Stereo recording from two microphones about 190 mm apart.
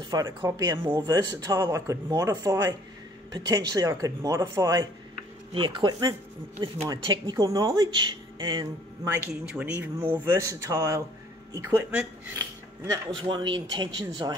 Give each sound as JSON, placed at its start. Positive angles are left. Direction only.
{"t": 0.1, "sound": "speech", "side_deg": -20}
{"t": 9.1, "sound": "speech", "side_deg": -10}
{"t": 12.8, "sound": "speech", "side_deg": -20}